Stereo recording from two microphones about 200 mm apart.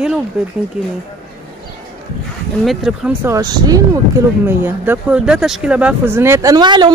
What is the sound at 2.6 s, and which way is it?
Speech, centre (ahead or behind).